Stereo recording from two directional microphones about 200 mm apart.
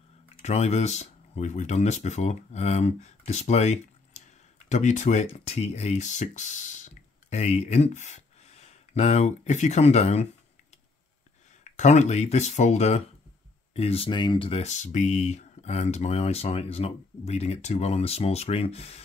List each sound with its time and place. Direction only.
0.4 s speech: 35° left (ahead or behind)
11.6 s speech: 35° left (ahead or behind)